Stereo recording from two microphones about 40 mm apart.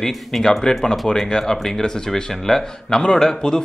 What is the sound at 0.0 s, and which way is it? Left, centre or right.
Speech, centre.